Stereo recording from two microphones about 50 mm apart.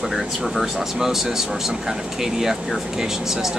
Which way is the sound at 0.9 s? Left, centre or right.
Centre.